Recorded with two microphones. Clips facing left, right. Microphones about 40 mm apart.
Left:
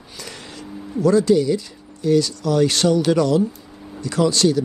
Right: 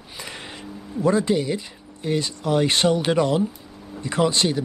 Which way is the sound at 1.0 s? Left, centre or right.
Right.